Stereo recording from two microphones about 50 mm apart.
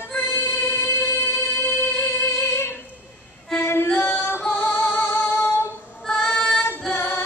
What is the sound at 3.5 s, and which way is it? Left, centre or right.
Female singing, left.